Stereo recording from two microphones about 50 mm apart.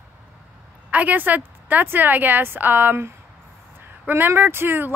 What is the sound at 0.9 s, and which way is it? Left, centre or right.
A woman's voice, right.